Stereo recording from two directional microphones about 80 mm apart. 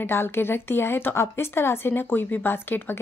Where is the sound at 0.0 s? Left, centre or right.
Left.